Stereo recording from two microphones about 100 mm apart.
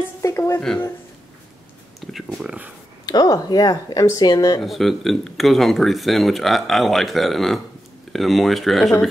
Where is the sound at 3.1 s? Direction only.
40° left (ahead or behind).